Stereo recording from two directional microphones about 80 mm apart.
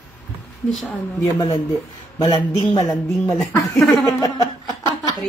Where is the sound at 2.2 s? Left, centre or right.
Left.